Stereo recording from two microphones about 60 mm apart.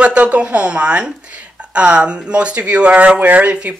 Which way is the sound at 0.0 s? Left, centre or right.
Centre.